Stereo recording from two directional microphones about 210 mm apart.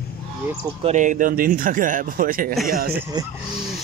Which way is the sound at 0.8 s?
35° right (ahead or behind).